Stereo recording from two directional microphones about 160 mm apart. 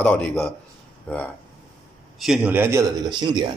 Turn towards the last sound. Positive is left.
turn(degrees=-25)  # may be behind; listen again after turning